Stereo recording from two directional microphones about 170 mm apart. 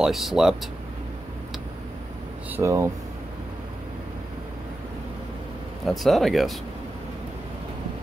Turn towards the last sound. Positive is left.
turn(degrees=0)  # may be behind; listen again after turning